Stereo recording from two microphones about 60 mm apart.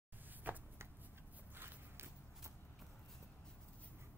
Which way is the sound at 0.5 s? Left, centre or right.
Right.